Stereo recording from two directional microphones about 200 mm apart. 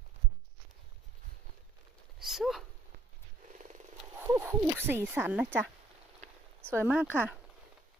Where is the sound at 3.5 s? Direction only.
35° right (ahead or behind).